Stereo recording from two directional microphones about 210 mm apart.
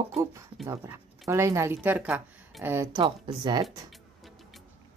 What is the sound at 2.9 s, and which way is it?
Speech, 25° right (ahead or behind).